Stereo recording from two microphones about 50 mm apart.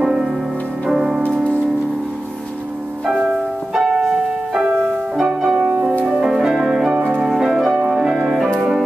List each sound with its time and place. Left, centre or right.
0.0 s music: centre
3.3 s music: centre